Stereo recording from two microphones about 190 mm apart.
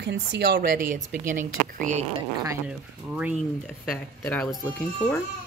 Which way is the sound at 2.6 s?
5° right (ahead or behind).